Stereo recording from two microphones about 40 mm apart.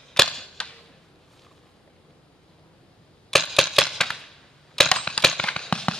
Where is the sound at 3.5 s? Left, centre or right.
Centre.